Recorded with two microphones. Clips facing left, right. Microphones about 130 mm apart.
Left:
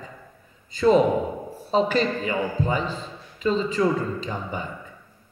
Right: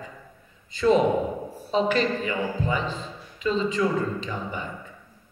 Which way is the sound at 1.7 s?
40° left (ahead or behind).